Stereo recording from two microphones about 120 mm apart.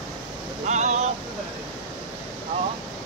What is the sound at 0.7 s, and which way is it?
Speech, 75° right (ahead or behind).